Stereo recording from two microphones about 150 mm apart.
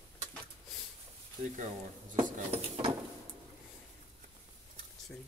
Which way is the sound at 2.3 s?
45° right (ahead or behind).